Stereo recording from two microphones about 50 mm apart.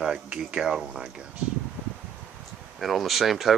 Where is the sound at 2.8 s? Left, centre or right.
Centre.